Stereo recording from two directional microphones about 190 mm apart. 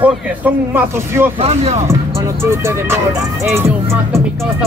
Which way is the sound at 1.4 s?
35° right (ahead or behind).